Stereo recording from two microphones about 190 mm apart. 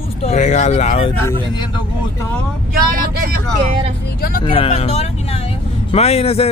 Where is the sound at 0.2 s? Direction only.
35° left (ahead or behind).